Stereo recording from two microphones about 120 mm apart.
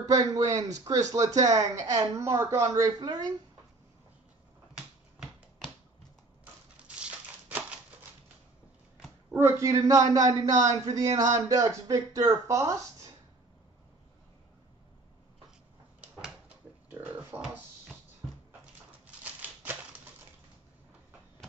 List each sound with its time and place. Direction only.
0.0 s speech: 30° right (ahead or behind)
4.7 s finger snapping: centre (ahead or behind)
6.8 s a sound: 10° right (ahead or behind)
9.4 s speech: 25° right (ahead or behind)
16.9 s a sound: 15° right (ahead or behind)
19.4 s typewriter: 15° right (ahead or behind)